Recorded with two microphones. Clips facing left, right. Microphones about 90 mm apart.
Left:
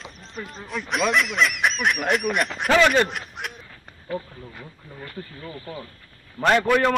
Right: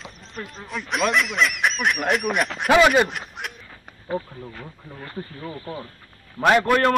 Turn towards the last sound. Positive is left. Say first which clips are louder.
# right 1 dB
turn(degrees=-5)  # may be behind; listen again after turning